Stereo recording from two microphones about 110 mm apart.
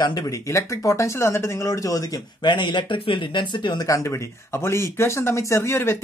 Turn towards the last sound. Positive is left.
turn(degrees=25)  # may be behind; listen again after turning